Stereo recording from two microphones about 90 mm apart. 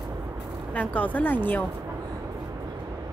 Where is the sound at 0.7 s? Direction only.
15° left (ahead or behind).